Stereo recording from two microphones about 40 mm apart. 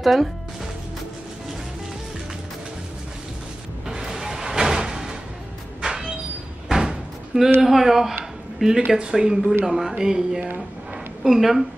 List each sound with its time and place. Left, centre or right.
0.0 s speech: centre
3.8 s music: centre
5.8 s train: centre
6.7 s slam: centre
7.6 s speech: centre
9.7 s speech: centre